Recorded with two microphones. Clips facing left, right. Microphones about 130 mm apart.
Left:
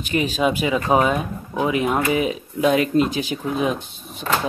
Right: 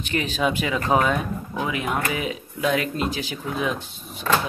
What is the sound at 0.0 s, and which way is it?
Speech, 10° left (ahead or behind).